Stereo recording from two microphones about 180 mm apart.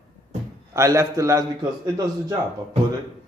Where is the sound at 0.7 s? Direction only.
15° right (ahead or behind).